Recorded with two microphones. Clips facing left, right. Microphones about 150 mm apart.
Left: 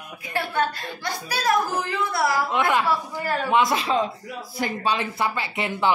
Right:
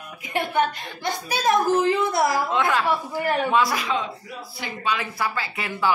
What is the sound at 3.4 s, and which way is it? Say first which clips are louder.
Speech: left 1 dB; 20° left (ahead or behind).